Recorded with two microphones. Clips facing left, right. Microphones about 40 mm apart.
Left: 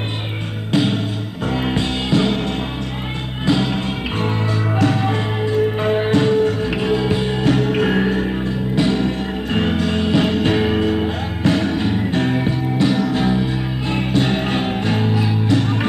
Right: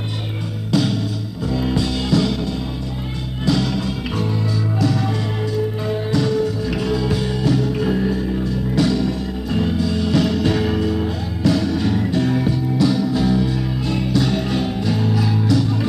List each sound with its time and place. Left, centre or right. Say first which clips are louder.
0.7 s music: left 1 dB; left
7.4 s music: left 3 dB; left